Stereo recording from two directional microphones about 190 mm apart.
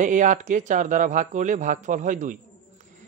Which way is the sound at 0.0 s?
40° right (ahead or behind).